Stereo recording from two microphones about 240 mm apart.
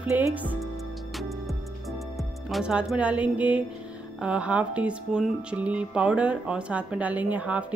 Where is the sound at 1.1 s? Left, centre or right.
Centre.